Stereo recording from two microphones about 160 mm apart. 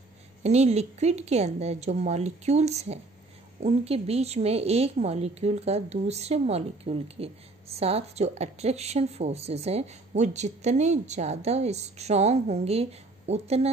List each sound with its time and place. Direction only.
0.4 s a woman's voice: 45° right (ahead or behind)